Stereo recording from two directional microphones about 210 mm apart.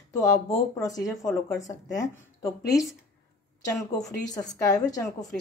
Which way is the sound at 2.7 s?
Centre (ahead or behind).